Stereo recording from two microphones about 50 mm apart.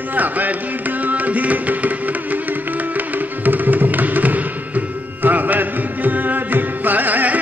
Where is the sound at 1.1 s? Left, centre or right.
Right.